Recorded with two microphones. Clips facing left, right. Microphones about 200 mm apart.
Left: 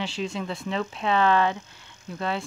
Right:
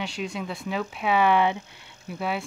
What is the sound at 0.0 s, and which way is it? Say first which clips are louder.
Speech: left 1 dB; centre (ahead or behind).